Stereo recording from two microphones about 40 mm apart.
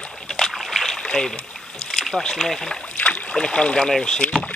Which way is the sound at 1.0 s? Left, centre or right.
Centre.